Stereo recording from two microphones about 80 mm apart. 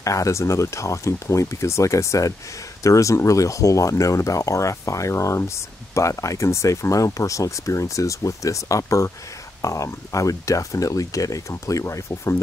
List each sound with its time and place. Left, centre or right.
0.0 s speech: left